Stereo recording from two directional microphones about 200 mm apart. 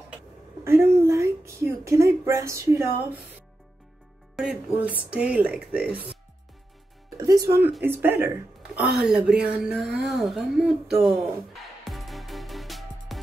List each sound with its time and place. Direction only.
0.7 s a sound: 10° right (ahead or behind)
4.4 s speech: 5° right (ahead or behind)
7.2 s speech: 15° right (ahead or behind); by 11.2 s centre (ahead or behind)
11.8 s music: centre (ahead or behind)